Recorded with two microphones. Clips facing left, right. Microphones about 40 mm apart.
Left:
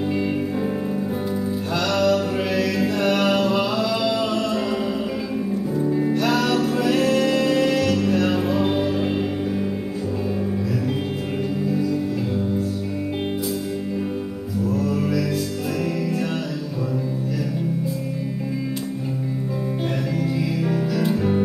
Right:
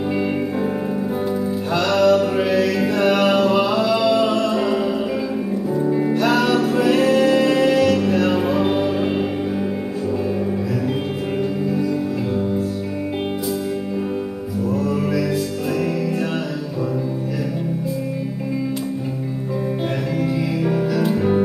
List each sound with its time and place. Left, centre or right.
1.8 s music: centre
5.8 s music: centre
14.7 s music: centre
20.2 s music: centre